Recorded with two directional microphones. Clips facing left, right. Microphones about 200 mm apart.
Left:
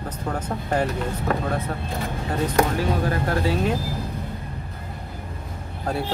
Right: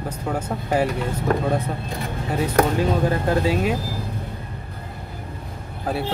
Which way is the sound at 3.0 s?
20° right (ahead or behind).